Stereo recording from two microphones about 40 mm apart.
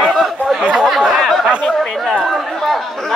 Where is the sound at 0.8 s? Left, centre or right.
Centre.